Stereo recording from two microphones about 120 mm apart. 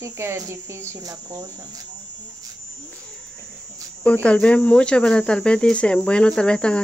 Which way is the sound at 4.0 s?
10° left (ahead or behind).